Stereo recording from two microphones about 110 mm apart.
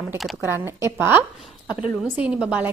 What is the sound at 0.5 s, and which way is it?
Speech, 25° right (ahead or behind).